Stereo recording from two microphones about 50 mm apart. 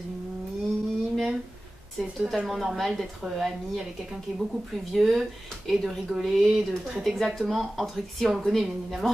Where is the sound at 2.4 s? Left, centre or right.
Centre.